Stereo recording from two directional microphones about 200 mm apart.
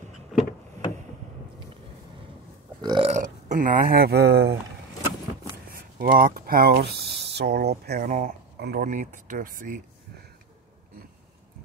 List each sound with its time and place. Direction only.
2.8 s burping: 20° right (ahead or behind)
3.1 s speech: 40° right (ahead or behind)
5.9 s speech: 45° right (ahead or behind)